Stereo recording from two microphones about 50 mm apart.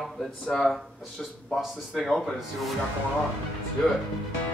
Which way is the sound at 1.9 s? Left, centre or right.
Centre.